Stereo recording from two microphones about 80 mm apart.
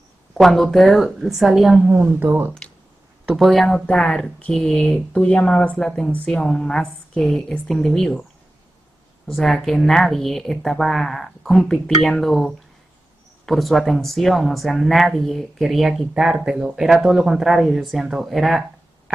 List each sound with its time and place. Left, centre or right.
0.3 s speech: centre
1.9 s speech: right
3.3 s speech: centre
9.3 s speech: centre